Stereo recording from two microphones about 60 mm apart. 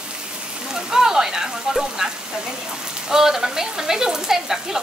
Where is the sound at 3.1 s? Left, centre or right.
Centre.